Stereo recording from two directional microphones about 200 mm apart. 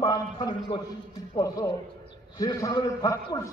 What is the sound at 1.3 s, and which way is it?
A man's voice, 20° left (ahead or behind).